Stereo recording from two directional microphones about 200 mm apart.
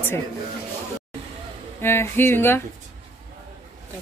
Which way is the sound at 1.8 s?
10° left (ahead or behind).